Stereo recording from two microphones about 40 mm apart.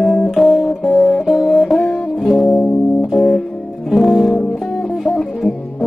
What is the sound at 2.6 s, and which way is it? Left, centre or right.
Music, left.